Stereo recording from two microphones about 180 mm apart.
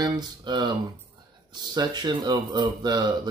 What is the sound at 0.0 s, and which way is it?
Speech, 25° right (ahead or behind).